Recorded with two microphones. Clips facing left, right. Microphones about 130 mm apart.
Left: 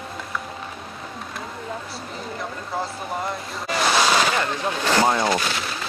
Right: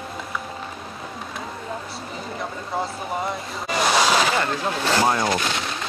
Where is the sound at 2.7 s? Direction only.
Centre (ahead or behind).